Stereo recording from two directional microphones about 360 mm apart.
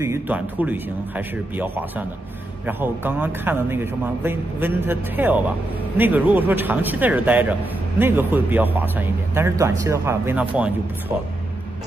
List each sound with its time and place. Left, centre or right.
0.0 s speech: centre